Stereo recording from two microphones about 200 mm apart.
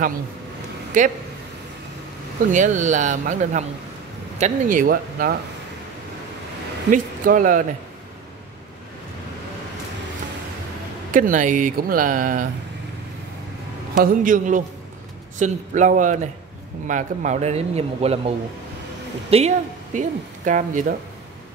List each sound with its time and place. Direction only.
1.0 s a man's voice: 40° right (ahead or behind)
2.5 s a man's voice: 40° right (ahead or behind)
6.9 s a man's voice: 40° right (ahead or behind)
11.1 s a man's voice: 40° right (ahead or behind)
13.9 s a man's voice: 45° right (ahead or behind)
19.3 s speech: 35° right (ahead or behind)